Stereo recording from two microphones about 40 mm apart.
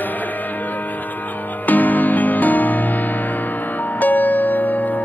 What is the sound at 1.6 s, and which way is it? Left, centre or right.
Music, left.